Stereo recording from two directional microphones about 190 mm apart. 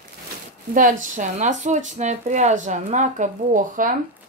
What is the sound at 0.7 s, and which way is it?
Speech, 45° right (ahead or behind).